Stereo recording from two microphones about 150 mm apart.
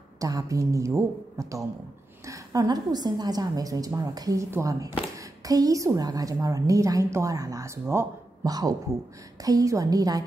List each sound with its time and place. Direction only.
0.2 s a woman's voice: 25° right (ahead or behind)